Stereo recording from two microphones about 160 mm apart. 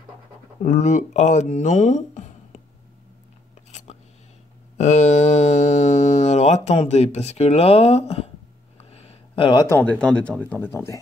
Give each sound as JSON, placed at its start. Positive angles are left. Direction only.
{"t": 0.6, "sound": "speech", "side_deg": 50}
{"t": 4.7, "sound": "speech", "side_deg": 45}
{"t": 8.7, "sound": "a sound", "side_deg": 40}
{"t": 9.7, "sound": "speech", "side_deg": 10}